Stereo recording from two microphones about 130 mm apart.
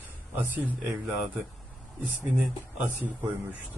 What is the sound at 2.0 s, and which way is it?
A man's voice, 15° right (ahead or behind).